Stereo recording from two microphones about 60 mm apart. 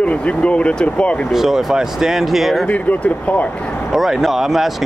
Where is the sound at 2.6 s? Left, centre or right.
Left.